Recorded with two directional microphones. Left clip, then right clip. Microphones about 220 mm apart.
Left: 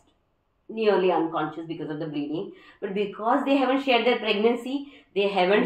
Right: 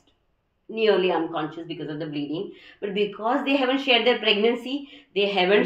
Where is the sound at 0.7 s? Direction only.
35° right (ahead or behind).